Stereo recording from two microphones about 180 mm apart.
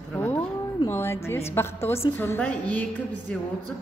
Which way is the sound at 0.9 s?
15° left (ahead or behind).